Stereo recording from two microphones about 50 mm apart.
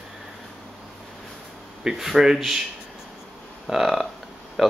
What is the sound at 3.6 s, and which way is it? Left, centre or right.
Speech, centre.